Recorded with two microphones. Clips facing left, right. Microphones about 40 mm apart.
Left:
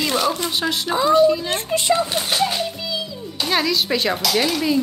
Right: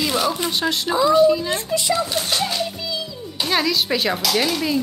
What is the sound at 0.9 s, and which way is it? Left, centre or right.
Speech, left.